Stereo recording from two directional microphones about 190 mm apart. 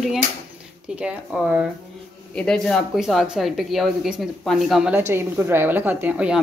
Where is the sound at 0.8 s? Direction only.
5° right (ahead or behind).